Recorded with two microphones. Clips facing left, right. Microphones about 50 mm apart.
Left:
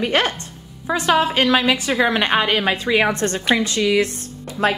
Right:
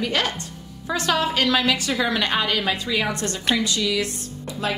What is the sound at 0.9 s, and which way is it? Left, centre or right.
A woman's voice, left.